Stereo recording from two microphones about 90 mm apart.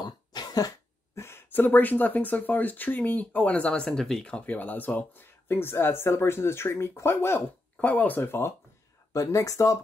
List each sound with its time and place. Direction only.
0.0 s cough: 50° left (ahead or behind)
1.1 s speech: 30° left (ahead or behind)
9.1 s speech: 35° left (ahead or behind)